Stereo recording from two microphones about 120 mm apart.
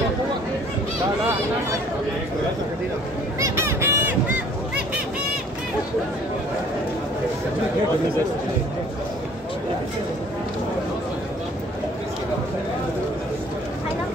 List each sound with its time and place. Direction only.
3.3 s fowl: 25° right (ahead or behind)